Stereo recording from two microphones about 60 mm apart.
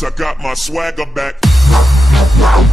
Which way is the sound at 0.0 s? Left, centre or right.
Centre.